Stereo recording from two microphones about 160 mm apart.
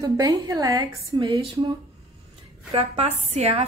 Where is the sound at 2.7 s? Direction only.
40° right (ahead or behind).